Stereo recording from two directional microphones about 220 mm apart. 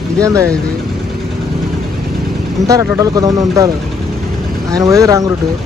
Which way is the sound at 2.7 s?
15° right (ahead or behind).